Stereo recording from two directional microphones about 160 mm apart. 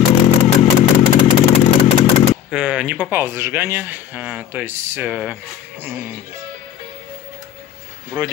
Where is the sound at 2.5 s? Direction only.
5° right (ahead or behind).